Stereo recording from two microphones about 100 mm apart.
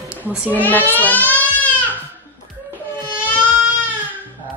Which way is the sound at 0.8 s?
20° left (ahead or behind).